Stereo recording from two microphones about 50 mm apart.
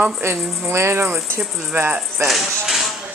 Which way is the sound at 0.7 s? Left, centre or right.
Right.